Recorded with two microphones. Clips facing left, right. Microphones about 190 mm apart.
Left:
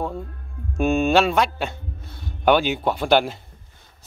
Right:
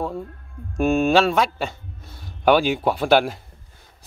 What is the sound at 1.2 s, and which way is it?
A man's voice, centre (ahead or behind).